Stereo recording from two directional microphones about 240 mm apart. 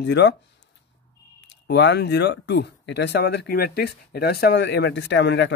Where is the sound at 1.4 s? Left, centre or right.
Left.